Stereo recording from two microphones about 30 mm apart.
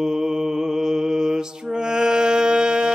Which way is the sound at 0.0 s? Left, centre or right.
Centre.